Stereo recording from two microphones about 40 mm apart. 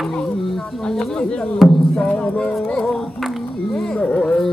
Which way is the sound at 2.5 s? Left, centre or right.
Centre.